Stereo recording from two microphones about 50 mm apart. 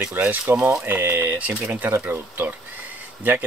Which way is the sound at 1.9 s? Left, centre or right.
Right.